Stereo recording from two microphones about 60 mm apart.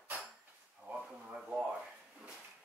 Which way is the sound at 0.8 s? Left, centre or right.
Right.